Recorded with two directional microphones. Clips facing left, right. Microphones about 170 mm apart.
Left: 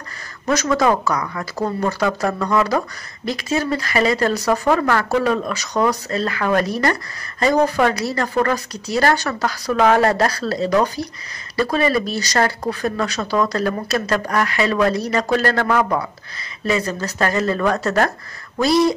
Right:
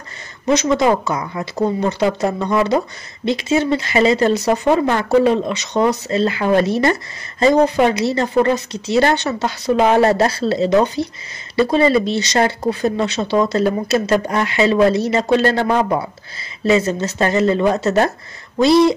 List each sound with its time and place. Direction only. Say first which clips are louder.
0.5 s speech: right 2 dB; 20° right (ahead or behind)